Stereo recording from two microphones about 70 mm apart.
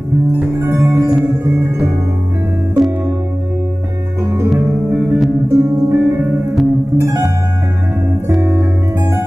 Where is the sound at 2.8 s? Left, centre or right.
Centre.